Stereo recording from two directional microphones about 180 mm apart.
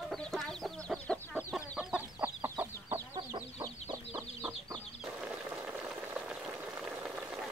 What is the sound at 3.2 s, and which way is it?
Chicken, 25° right (ahead or behind).